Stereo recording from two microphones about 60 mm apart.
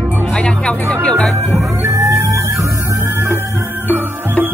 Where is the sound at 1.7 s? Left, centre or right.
Right.